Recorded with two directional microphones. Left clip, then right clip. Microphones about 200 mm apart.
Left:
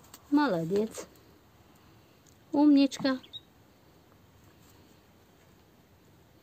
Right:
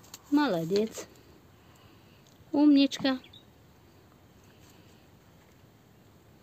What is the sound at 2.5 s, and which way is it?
Speech, 10° right (ahead or behind).